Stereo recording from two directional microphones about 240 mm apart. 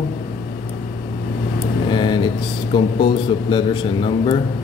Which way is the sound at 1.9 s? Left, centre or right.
Centre.